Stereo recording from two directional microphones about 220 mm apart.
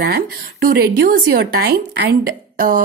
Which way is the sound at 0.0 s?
45° right (ahead or behind).